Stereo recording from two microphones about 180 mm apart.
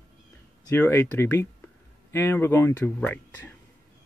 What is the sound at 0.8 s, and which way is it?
Speech, 10° left (ahead or behind).